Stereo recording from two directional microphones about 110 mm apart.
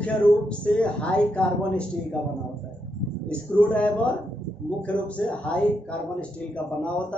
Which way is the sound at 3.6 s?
10° left (ahead or behind).